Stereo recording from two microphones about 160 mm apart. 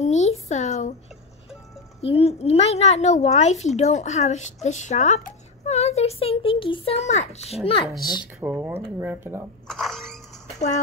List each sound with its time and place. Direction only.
0.0 s a woman's voice: 45° left (ahead or behind)
2.0 s a woman's voice: 40° left (ahead or behind)
8.4 s speech: 10° right (ahead or behind)
9.7 s a sound: centre (ahead or behind)